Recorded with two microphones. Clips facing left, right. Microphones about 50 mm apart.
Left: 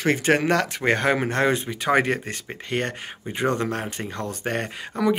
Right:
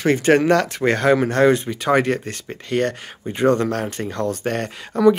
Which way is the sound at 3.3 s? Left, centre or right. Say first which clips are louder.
Right 6 dB; centre.